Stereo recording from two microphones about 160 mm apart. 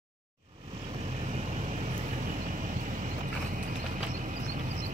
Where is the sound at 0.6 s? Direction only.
40° right (ahead or behind).